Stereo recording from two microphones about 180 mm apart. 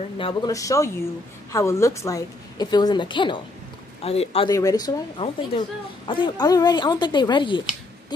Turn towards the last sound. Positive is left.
turn(degrees=25)  # may be behind; listen again after turning